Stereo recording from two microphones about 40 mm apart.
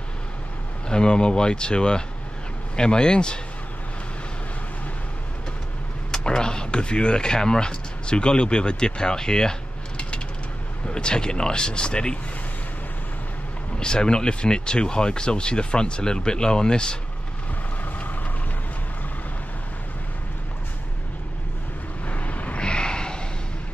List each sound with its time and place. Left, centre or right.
0.8 s speech: left
6.1 s speech: centre
13.7 s speech: left
22.0 s vehicle: left
22.6 s a sound: left